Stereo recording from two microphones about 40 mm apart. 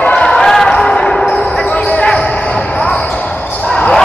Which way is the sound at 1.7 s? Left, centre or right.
Left.